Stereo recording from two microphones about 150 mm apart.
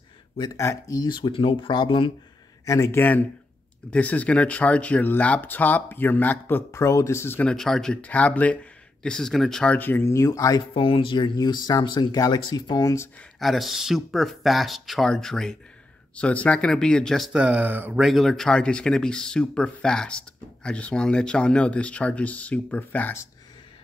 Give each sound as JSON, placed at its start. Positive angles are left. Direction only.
{"t": 0.4, "sound": "speech", "side_deg": 20}
{"t": 2.6, "sound": "speech", "side_deg": 20}
{"t": 10.7, "sound": "speech", "side_deg": 35}
{"t": 13.4, "sound": "speech", "side_deg": 0}
{"t": 18.0, "sound": "speech", "side_deg": 0}